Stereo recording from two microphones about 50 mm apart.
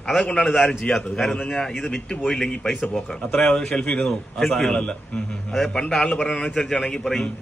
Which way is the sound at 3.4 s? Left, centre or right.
Centre.